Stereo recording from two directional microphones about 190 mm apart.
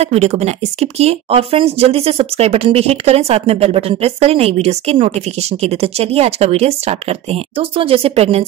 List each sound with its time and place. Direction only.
0.0 s speech: 35° right (ahead or behind)